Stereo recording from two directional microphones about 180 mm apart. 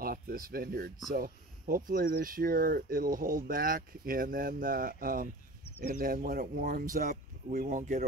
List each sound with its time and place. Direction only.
0.0 s speech: 55° right (ahead or behind)